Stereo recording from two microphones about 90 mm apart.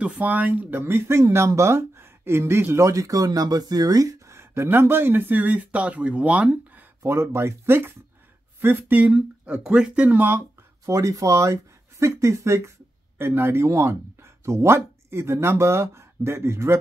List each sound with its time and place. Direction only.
0.0 s speech: 15° right (ahead or behind); by 4.4 s 40° right (ahead or behind)
4.4 s speech: 25° right (ahead or behind)
7.0 s speech: 30° right (ahead or behind)
10.9 s speech: 35° right (ahead or behind)